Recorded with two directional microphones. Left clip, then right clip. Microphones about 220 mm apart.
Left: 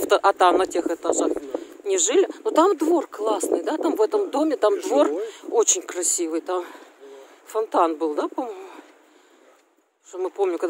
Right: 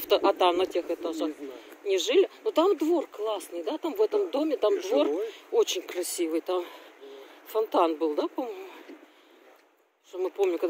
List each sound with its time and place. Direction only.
0.1 s speech: 25° left (ahead or behind)
10.1 s speech: 15° left (ahead or behind)